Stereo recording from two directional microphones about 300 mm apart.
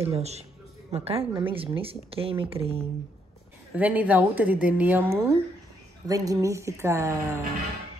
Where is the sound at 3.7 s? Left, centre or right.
Centre.